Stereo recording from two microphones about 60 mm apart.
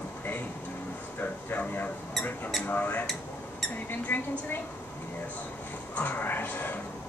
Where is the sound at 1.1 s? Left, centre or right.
Left.